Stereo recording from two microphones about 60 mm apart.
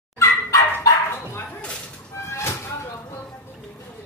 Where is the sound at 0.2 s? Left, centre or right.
Left.